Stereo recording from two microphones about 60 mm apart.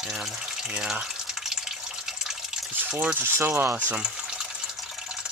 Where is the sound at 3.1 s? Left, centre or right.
Right.